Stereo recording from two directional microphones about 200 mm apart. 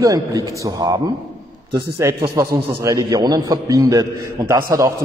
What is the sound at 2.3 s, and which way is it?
A man's voice, 15° right (ahead or behind).